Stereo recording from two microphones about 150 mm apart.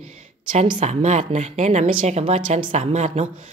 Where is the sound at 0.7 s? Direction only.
50° right (ahead or behind).